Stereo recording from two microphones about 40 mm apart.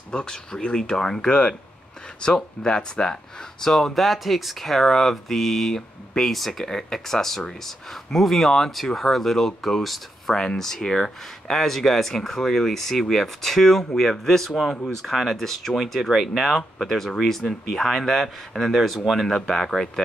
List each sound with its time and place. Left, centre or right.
0.1 s speech: left